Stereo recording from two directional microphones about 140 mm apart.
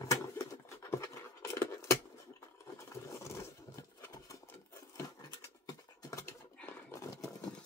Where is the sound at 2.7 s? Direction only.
20° left (ahead or behind).